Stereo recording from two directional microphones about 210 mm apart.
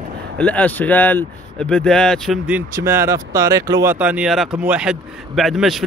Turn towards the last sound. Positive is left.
turn(degrees=0)  # may be behind; listen again after turning